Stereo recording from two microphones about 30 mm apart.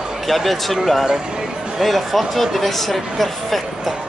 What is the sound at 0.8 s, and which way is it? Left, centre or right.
Speech, centre.